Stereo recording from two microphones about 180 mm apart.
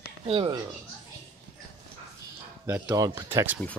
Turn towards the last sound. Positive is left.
turn(degrees=-10)  # may be behind; listen again after turning